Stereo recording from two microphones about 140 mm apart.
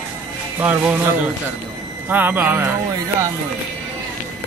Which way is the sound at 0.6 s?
15° right (ahead or behind).